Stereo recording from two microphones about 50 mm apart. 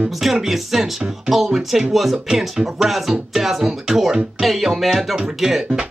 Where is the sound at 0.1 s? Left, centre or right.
Centre.